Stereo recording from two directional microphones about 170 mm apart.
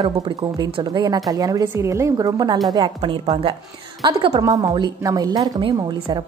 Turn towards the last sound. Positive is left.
turn(degrees=-25)  # may be behind; listen again after turning